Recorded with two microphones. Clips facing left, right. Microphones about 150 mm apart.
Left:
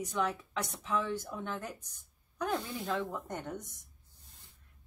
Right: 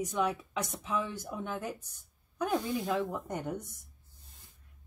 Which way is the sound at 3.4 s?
10° right (ahead or behind).